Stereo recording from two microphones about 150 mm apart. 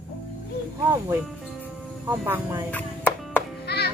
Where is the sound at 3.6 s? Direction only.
90° left.